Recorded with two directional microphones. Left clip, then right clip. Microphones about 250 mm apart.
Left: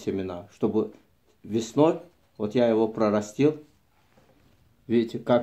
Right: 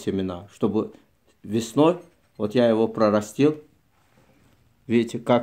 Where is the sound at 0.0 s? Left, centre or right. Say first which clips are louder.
Right 3 dB; right.